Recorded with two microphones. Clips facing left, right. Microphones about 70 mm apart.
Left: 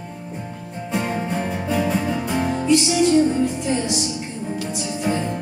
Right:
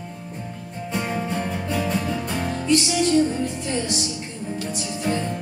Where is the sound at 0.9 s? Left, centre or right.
Centre.